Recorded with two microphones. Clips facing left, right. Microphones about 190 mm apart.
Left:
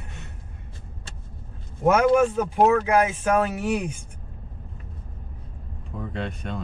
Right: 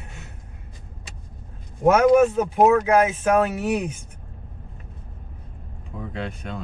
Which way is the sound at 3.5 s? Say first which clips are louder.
Right 2 dB; 5° right (ahead or behind).